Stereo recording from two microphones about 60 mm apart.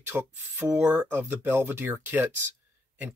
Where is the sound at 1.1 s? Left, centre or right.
Right.